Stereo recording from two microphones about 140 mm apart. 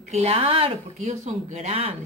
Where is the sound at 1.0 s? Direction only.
55° right (ahead or behind).